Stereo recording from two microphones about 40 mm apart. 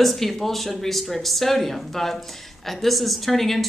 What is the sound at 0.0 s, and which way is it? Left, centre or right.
Speech, centre.